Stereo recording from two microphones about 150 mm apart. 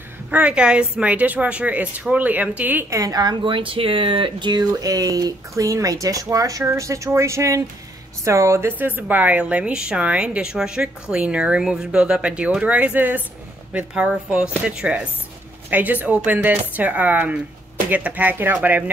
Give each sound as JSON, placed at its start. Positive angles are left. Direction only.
{"t": 0.3, "sound": "a woman's voice", "side_deg": -5}